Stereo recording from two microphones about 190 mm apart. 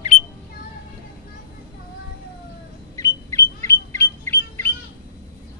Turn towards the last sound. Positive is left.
turn(degrees=10)  # may be behind; listen again after turning